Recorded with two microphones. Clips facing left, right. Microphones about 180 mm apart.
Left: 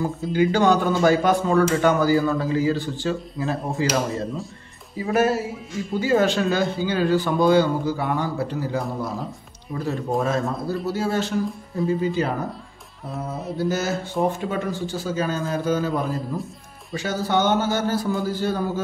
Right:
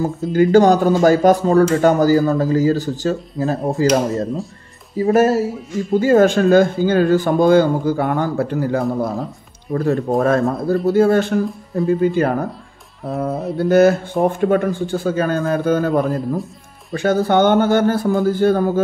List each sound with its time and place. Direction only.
0.3 s speech: 45° right (ahead or behind)